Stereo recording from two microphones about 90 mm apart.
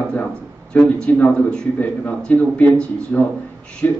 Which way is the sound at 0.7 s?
10° left (ahead or behind).